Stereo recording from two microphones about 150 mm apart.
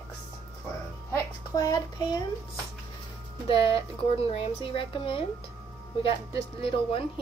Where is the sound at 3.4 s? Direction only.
35° left (ahead or behind).